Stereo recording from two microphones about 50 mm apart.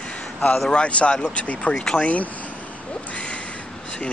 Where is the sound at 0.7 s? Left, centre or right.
Left.